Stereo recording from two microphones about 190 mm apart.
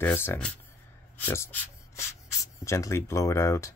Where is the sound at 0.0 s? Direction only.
10° left (ahead or behind).